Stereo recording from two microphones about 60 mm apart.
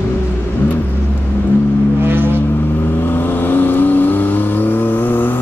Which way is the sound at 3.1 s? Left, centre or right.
Left.